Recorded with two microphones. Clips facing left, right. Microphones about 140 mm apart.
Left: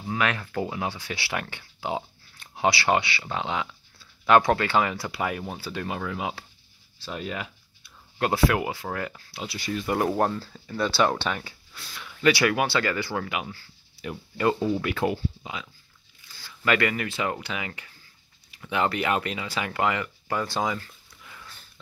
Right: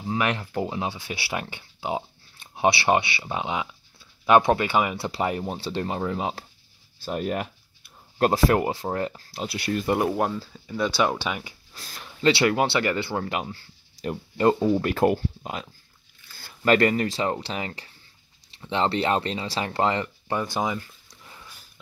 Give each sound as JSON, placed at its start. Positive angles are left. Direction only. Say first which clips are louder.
{"t": 0.1, "sound": "speech", "louder": "right 1 dB", "side_deg": -20}
{"t": 7.0, "sound": "speech", "louder": "right 6 dB", "side_deg": -50}
{"t": 9.5, "sound": "speech", "louder": "right 3 dB", "side_deg": -55}
{"t": 10.0, "sound": "speech", "louder": "even", "side_deg": -5}
{"t": 11.7, "sound": "speech", "louder": "even", "side_deg": -40}
{"t": 12.1, "sound": "speech", "louder": "right 1 dB", "side_deg": -25}
{"t": 14.7, "sound": "speech", "louder": "right 5 dB", "side_deg": -40}
{"t": 21.1, "sound": "dog", "louder": "even", "side_deg": -30}